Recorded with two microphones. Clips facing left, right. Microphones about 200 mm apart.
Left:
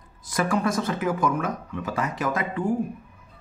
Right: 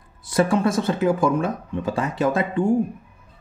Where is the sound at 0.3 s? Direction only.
25° right (ahead or behind).